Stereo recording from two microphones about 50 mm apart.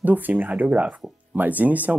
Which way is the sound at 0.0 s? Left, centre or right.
Right.